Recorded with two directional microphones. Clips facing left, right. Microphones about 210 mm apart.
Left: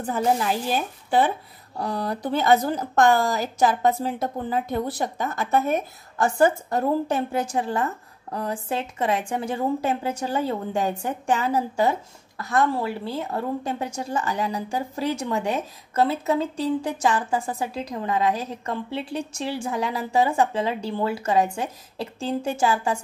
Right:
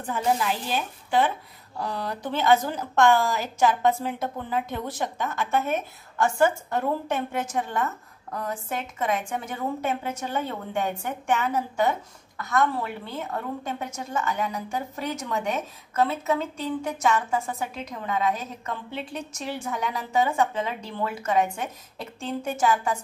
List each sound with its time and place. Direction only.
0.0 s a woman's voice: 35° left (ahead or behind)